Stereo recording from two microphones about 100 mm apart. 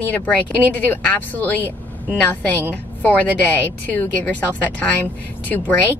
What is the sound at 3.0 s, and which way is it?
Speech, 15° left (ahead or behind).